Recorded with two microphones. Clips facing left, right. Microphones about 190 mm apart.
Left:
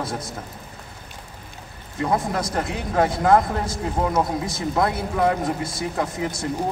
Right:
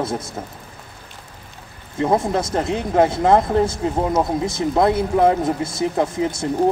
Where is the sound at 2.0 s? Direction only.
25° right (ahead or behind).